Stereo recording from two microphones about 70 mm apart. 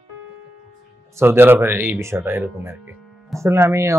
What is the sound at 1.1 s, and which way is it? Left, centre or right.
Speech, right.